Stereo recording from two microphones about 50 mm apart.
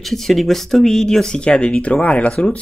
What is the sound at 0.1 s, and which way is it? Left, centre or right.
Speech, centre.